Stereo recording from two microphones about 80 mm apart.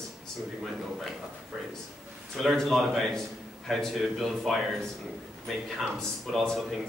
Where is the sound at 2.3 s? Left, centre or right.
Centre.